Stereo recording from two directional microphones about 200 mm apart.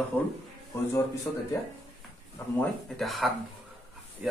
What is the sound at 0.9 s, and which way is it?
Speech, 15° left (ahead or behind).